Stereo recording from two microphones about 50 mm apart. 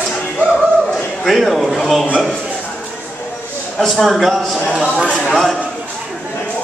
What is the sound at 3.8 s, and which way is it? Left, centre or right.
A man's voice, centre.